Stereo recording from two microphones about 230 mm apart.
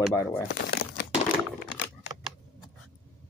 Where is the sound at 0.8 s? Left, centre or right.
Left.